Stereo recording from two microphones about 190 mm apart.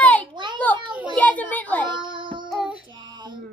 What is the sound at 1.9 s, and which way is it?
Child singing, 25° right (ahead or behind).